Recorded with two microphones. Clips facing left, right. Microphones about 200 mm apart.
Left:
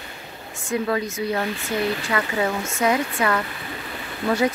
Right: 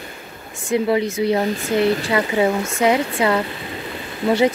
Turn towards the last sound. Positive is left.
turn(degrees=-25)  # may be behind; listen again after turning